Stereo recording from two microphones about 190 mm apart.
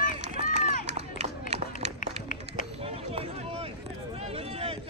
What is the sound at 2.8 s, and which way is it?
Run, 30° right (ahead or behind).